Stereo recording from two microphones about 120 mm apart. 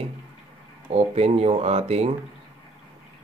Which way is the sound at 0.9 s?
60° right (ahead or behind).